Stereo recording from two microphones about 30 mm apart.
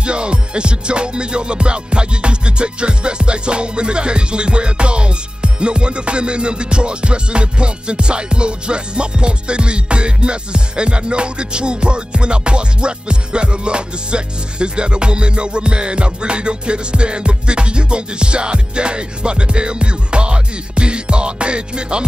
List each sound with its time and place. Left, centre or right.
0.0 s music: right